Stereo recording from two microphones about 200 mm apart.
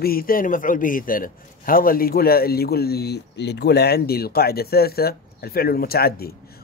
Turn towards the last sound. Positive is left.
turn(degrees=50)  # may be behind; listen again after turning